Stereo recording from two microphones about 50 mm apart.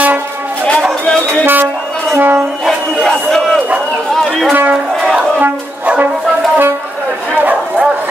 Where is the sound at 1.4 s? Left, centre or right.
Right.